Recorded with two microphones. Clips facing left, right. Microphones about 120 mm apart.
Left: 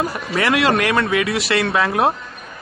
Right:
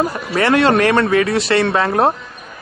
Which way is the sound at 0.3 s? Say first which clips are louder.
Right 4 dB; 30° right (ahead or behind).